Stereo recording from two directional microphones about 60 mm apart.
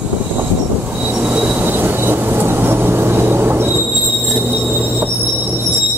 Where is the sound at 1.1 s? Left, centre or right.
Right.